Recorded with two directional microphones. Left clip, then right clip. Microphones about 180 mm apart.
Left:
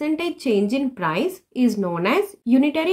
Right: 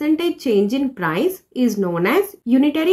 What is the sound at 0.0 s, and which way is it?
A woman's voice, 20° left (ahead or behind).